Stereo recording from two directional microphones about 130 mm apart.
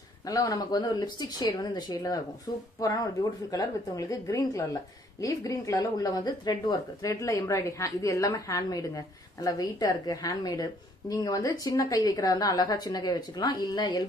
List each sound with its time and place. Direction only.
0.2 s speech: 25° left (ahead or behind)